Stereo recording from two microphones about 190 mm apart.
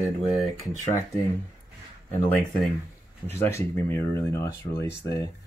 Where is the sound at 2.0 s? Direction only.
10° left (ahead or behind).